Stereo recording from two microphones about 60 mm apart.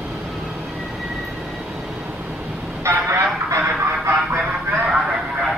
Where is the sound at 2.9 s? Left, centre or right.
Right.